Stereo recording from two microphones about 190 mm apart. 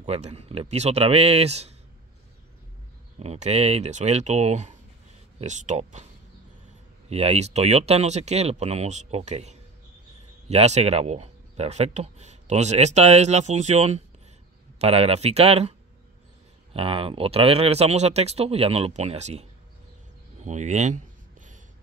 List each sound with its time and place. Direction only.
0.0 s speech: 35° right (ahead or behind)
3.2 s speech: 35° right (ahead or behind)
7.1 s speech: 35° right (ahead or behind)
16.7 s speech: 30° right (ahead or behind)
20.4 s a sound: 40° right (ahead or behind)